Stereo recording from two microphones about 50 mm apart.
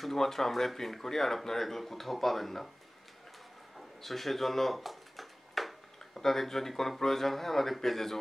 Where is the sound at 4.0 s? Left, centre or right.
Centre.